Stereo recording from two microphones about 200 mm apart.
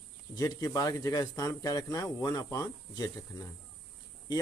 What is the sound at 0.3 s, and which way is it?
Speech, 15° left (ahead or behind).